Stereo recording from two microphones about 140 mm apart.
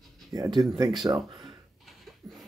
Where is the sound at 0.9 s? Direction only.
Centre (ahead or behind).